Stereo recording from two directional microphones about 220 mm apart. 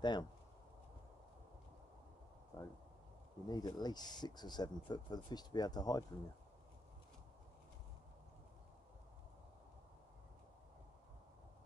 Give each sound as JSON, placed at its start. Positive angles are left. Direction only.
{"t": 0.0, "sound": "speech", "side_deg": 20}
{"t": 2.5, "sound": "a sound", "side_deg": 15}
{"t": 3.4, "sound": "speech", "side_deg": 20}